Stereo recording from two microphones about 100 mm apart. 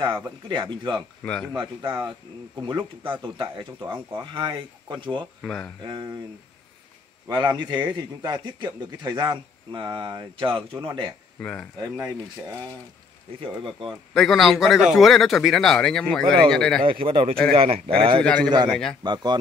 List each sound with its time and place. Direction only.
0.5 s a man's voice: 55° right (ahead or behind)
1.2 s speech: 10° left (ahead or behind)
2.6 s a man's voice: 55° right (ahead or behind)
5.4 s a man's voice: centre (ahead or behind)
7.2 s a man's voice: 45° right (ahead or behind)
11.3 s speech: 10° left (ahead or behind)
13.4 s speech: 60° right (ahead or behind)
14.1 s a man's voice: centre (ahead or behind)
16.8 s speech: 65° right (ahead or behind)
18.2 s a man's voice: 10° left (ahead or behind)
19.0 s a man's voice: 45° right (ahead or behind)